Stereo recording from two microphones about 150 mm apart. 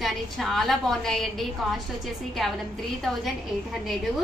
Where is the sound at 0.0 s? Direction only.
Centre (ahead or behind).